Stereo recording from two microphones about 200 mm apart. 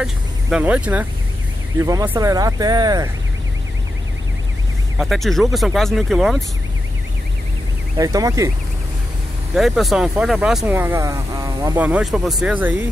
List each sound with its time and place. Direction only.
0.0 s speech: 5° right (ahead or behind)
4.9 s speech: centre (ahead or behind)
8.0 s speech: 15° right (ahead or behind)
9.5 s speech: centre (ahead or behind)